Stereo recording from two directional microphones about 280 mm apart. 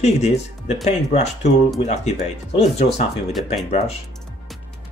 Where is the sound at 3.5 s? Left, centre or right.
Left.